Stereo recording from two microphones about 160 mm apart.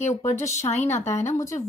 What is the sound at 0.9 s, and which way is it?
Speech, 45° left (ahead or behind).